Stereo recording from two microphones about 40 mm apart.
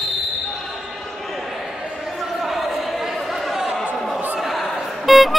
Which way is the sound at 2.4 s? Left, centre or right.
Centre.